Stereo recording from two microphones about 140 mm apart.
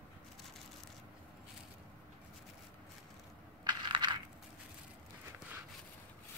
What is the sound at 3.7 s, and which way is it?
Crushing, 35° right (ahead or behind).